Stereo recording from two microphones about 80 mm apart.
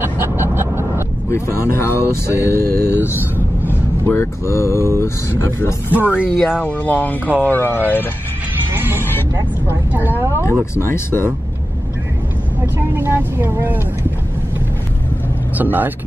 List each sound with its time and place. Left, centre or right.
0.0 s a sound: right
1.3 s speech: left
5.9 s a woman's voice: right
6.6 s speech: left
8.7 s music: right
9.9 s a woman's voice: right
10.8 s speech: left
12.7 s speech: right
15.5 s speech: right